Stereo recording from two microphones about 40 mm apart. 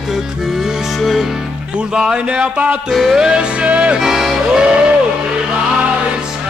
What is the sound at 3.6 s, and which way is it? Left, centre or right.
Music, right.